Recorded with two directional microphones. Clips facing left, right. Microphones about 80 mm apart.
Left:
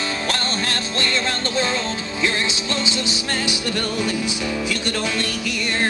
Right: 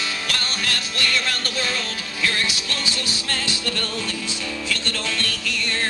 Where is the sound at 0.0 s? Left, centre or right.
Left.